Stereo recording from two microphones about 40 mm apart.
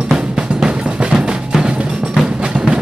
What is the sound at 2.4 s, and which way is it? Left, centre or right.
Music, right.